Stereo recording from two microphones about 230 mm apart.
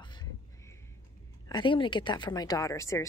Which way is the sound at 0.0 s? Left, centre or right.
Centre.